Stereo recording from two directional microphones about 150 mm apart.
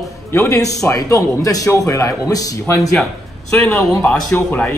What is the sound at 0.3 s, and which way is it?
A man's voice, 20° left (ahead or behind).